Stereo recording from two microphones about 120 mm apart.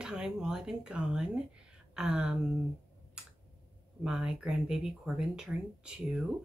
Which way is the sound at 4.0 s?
5° right (ahead or behind).